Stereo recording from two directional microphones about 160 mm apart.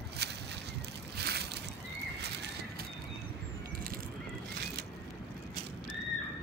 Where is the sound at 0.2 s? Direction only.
90° right.